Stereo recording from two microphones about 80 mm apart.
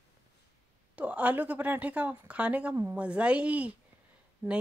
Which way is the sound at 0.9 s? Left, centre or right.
Centre.